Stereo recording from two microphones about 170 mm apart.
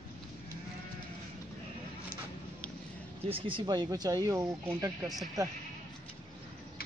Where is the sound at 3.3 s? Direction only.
25° right (ahead or behind).